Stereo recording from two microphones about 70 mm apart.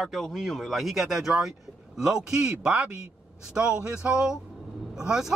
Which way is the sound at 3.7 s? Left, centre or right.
Centre.